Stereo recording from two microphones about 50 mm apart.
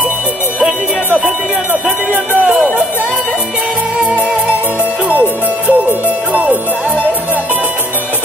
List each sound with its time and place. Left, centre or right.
0.6 s music: right
5.7 s music: right